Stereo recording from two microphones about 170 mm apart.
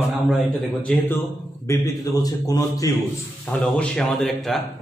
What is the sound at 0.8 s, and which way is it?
A man's voice, 10° left (ahead or behind).